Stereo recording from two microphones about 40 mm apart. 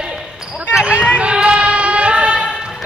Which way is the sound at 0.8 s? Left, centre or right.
Right.